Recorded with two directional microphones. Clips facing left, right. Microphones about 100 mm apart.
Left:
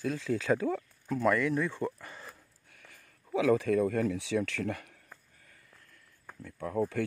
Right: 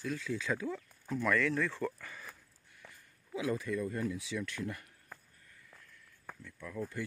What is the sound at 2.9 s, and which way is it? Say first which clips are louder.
Speech: left 10 dB; 90° left.